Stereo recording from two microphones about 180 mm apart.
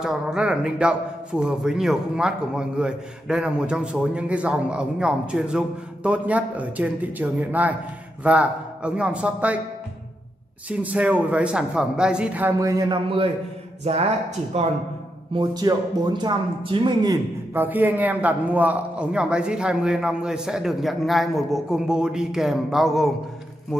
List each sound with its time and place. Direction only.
0.0 s a man's voice: 5° right (ahead or behind)
10.7 s speech: 5° right (ahead or behind); by 14.7 s 35° right (ahead or behind)
15.3 s speech: 25° right (ahead or behind)
17.6 s a man's voice: 10° right (ahead or behind)